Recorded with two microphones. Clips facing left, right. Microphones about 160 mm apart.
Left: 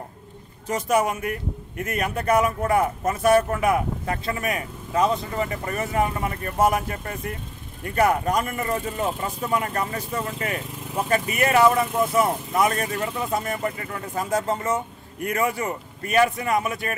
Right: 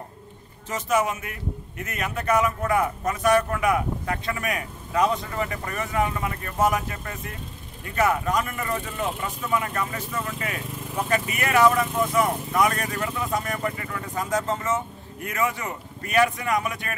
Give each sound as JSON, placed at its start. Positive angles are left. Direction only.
{"t": 0.7, "sound": "speech", "side_deg": 35}